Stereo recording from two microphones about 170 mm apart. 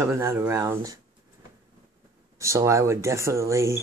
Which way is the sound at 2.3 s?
15° right (ahead or behind).